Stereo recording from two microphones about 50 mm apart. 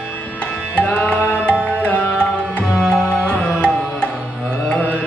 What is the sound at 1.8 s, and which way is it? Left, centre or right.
Music, left.